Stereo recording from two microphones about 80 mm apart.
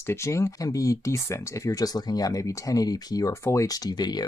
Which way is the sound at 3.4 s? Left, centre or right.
Left.